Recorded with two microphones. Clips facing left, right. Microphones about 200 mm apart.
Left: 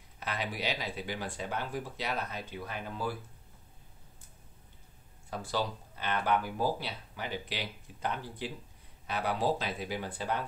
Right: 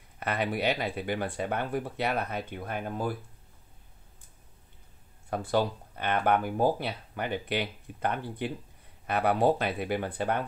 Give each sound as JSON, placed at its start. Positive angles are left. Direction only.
{"t": 0.2, "sound": "speech", "side_deg": -60}
{"t": 5.3, "sound": "speech", "side_deg": -55}